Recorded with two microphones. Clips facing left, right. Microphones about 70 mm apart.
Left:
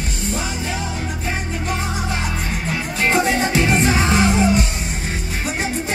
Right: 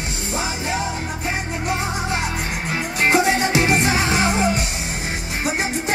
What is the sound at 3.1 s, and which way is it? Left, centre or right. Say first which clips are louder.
Music: right 1 dB; right.